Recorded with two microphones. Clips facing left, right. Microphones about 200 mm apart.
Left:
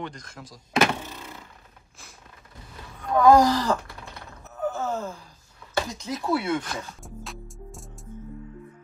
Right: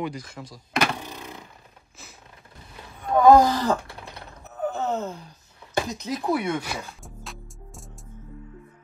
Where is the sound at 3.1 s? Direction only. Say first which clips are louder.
Right 1 dB; 20° right (ahead or behind).